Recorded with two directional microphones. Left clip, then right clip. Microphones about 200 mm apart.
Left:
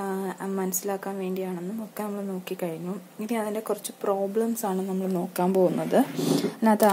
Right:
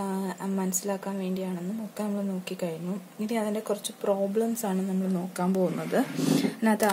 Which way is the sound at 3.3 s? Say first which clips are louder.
Left 1 dB; 15° left (ahead or behind).